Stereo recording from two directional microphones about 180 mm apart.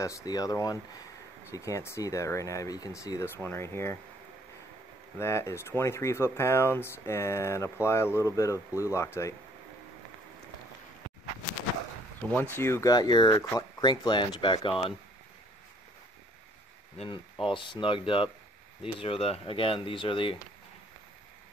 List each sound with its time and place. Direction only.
0.0 s speech: 20° left (ahead or behind)
5.2 s speech: 15° left (ahead or behind)
12.3 s speech: 10° left (ahead or behind); by 15.0 s 30° left (ahead or behind)
17.0 s speech: 30° left (ahead or behind)